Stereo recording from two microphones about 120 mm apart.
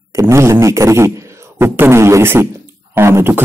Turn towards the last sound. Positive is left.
turn(degrees=-20)  # may be behind; listen again after turning